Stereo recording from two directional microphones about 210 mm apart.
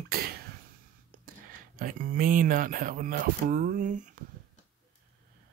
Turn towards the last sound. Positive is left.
turn(degrees=-35)  # may be behind; listen again after turning